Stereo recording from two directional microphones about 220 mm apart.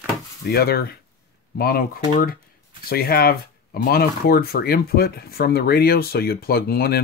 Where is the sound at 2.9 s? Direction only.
45° left (ahead or behind).